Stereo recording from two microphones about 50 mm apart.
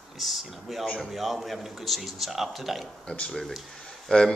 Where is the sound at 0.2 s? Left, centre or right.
Centre.